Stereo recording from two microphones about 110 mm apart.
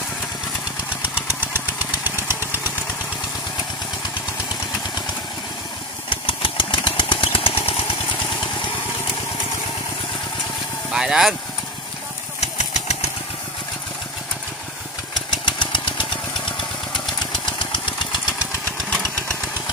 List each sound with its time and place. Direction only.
1.4 s engine: 15° right (ahead or behind)
6.0 s a sound: 50° left (ahead or behind)
10.9 s speech: 5° right (ahead or behind)
12.4 s engine: 85° left
15.3 s engine: 45° left (ahead or behind)
17.2 s engine: 45° left (ahead or behind)